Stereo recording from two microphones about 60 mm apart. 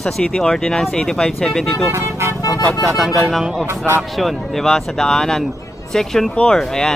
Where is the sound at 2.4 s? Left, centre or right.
Left.